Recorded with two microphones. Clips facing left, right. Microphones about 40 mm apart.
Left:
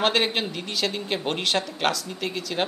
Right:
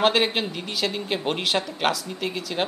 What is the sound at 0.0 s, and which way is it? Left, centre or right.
Speech, centre.